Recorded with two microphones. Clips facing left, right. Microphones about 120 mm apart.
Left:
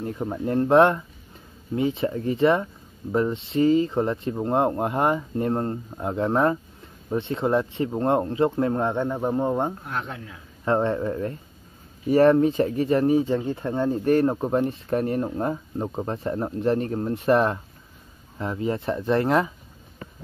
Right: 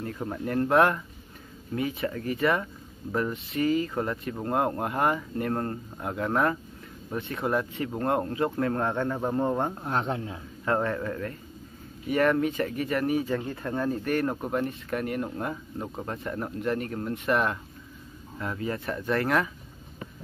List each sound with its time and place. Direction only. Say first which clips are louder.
0.0 s speech: left 4 dB; 20° left (ahead or behind)
9.8 s speech: right 3 dB; 30° right (ahead or behind)
10.6 s speech: left 5 dB; 25° left (ahead or behind)